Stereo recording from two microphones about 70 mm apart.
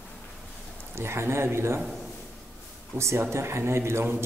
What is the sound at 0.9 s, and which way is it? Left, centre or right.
Speech, right.